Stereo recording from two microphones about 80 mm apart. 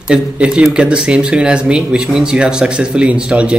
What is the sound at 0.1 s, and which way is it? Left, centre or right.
Speech, centre.